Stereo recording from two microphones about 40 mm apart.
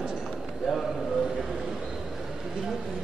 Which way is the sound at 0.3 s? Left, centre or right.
Centre.